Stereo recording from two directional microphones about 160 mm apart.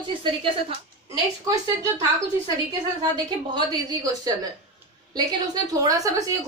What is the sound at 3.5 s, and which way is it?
A woman's voice, 25° right (ahead or behind).